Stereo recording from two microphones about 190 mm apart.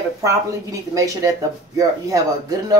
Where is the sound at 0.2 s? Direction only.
15° right (ahead or behind).